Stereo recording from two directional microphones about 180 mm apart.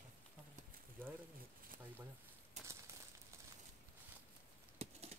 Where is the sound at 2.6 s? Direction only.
40° right (ahead or behind).